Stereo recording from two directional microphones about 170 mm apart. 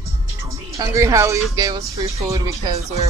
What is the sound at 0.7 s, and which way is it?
Speech, 20° right (ahead or behind).